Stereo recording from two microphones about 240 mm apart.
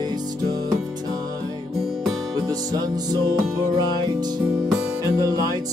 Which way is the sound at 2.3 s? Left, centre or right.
Centre.